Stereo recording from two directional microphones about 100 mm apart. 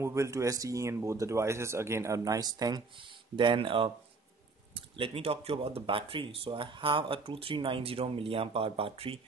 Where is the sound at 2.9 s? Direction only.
55° right (ahead or behind).